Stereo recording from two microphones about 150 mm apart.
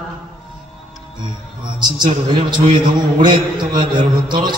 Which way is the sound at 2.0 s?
30° right (ahead or behind).